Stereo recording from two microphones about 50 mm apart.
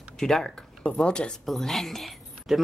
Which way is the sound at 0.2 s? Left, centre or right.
Centre.